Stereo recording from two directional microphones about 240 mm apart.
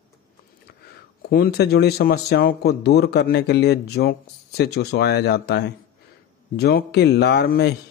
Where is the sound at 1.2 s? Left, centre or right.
Left.